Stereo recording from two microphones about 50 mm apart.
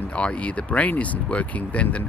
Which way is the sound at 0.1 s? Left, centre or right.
Left.